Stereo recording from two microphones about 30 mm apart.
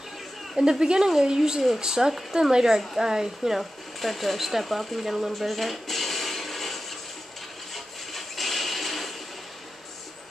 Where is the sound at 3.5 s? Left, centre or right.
Centre.